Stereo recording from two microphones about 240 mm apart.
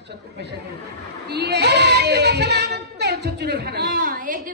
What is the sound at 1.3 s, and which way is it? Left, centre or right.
Child singing, right.